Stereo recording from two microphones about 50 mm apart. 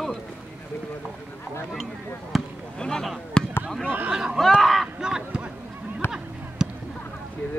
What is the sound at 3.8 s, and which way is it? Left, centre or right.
Speech, right.